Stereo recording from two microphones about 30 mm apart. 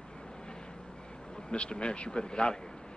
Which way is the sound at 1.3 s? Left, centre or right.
Left.